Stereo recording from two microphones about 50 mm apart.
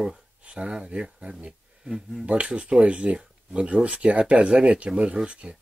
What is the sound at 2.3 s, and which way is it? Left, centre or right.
Speech, right.